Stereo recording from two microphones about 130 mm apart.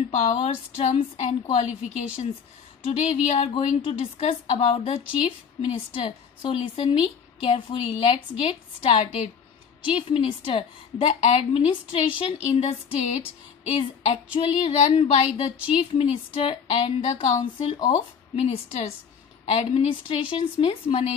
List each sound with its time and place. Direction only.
0.1 s a woman's voice: 55° left (ahead or behind)